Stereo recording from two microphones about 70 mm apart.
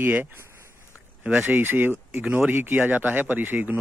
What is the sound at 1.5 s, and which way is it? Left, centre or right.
Speech, right.